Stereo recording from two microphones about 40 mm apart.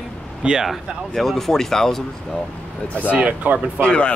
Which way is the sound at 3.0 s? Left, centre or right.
Right.